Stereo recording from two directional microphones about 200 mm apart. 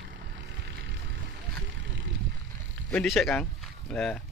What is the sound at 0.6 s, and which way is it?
Vehicle, 55° right (ahead or behind).